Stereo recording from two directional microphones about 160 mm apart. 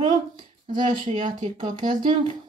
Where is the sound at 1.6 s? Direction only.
30° right (ahead or behind).